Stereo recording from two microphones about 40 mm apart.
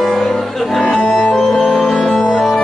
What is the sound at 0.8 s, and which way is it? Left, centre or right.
Music, centre.